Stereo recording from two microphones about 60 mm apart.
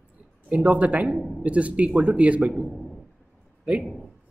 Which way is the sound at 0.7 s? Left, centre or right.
Right.